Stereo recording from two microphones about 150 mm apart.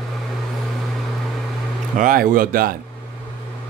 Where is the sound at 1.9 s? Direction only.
70° right (ahead or behind).